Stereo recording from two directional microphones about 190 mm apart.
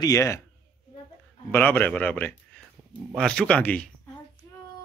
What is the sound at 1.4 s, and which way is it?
Speech, 10° left (ahead or behind).